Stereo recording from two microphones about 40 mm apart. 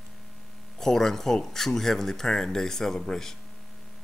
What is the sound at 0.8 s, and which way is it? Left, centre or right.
Speech, centre.